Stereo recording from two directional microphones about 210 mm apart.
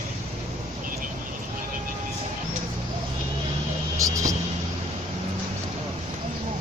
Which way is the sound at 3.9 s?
15° right (ahead or behind).